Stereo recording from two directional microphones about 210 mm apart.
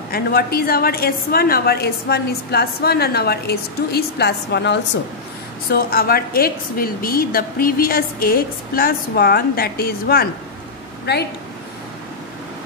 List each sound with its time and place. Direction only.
0.1 s a woman's voice: 45° left (ahead or behind)